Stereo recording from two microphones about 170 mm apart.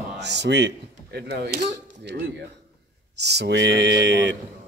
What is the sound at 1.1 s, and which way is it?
Speech, 75° right (ahead or behind).